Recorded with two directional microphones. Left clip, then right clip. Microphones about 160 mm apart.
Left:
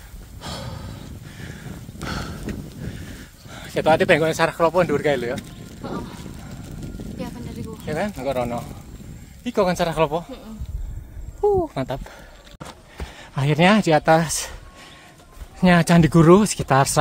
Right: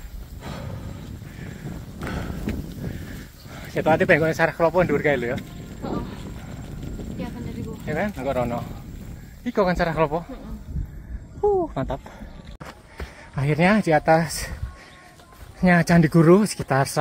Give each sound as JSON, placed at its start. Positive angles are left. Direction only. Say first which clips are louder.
{"t": 0.4, "sound": "a sound", "louder": "left 4 dB", "side_deg": 40}
{"t": 3.5, "sound": "speech", "louder": "left 2 dB", "side_deg": 25}
{"t": 5.8, "sound": "a sound", "louder": "right 1 dB", "side_deg": 60}
{"t": 7.8, "sound": "speech", "louder": "left 1 dB", "side_deg": 15}
{"t": 11.4, "sound": "speech", "louder": "left 2 dB", "side_deg": 0}
{"t": 13.3, "sound": "speech", "louder": "left 3 dB", "side_deg": 20}
{"t": 15.6, "sound": "speech", "louder": "left 2 dB", "side_deg": 20}